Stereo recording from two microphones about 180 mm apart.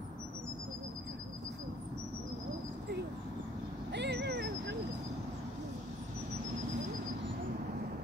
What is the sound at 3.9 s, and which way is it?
Vehicle, 70° right (ahead or behind).